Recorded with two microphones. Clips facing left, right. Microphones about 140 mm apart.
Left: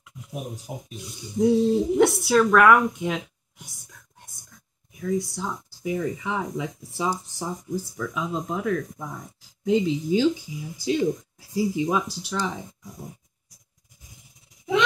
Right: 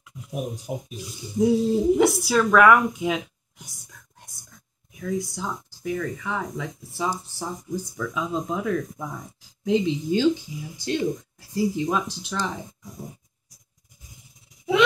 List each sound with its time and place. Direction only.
0.9 s speech: centre (ahead or behind)
5.0 s speech: centre (ahead or behind)
5.8 s speech: 15° left (ahead or behind)
7.7 s speech: 5° left (ahead or behind)